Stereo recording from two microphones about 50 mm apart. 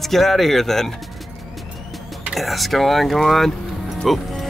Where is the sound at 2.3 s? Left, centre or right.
Centre.